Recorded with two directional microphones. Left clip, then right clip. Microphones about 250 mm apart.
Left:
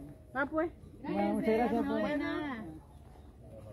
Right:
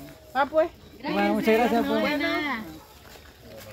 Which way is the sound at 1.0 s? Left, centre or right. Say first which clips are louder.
Right 9 dB; centre.